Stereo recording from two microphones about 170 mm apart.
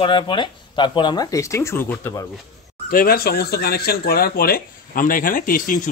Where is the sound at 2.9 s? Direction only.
60° left (ahead or behind).